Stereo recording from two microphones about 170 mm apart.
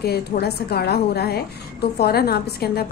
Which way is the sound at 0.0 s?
70° left (ahead or behind).